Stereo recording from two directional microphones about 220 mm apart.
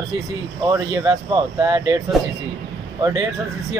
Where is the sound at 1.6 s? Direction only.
20° right (ahead or behind).